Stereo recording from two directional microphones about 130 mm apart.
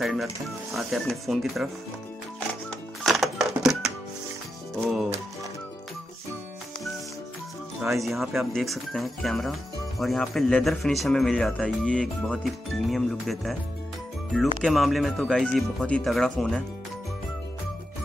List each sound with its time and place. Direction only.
0.0 s speech: centre (ahead or behind)
3.0 s music: centre (ahead or behind)
7.8 s speech: centre (ahead or behind)
14.6 s speech: centre (ahead or behind)